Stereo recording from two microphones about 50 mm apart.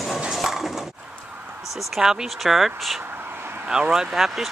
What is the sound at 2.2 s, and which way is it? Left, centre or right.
Speech, centre.